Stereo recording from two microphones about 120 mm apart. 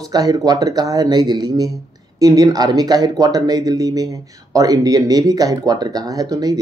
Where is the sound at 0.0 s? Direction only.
30° right (ahead or behind).